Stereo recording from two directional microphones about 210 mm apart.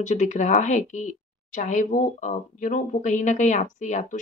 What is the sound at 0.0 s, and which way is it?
A woman's voice, 35° left (ahead or behind).